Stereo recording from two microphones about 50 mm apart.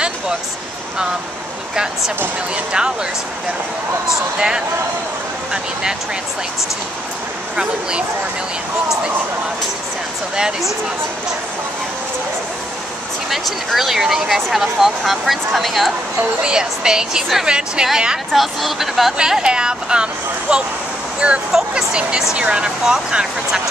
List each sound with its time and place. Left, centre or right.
2.5 s speech: centre
4.4 s speech: centre
13.3 s speech: centre
16.4 s speech: centre
18.3 s speech: centre
19.1 s speech: centre
21.5 s speech: centre